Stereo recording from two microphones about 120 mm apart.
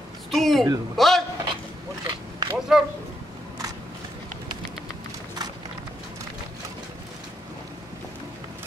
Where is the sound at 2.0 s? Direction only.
40° right (ahead or behind).